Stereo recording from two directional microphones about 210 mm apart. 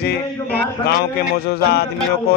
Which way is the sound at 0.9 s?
50° left (ahead or behind).